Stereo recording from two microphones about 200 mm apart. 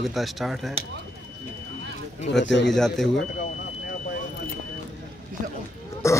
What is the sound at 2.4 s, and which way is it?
Speech, 60° left (ahead or behind).